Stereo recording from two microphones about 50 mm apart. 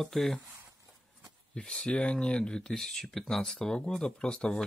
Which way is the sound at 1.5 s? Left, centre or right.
Centre.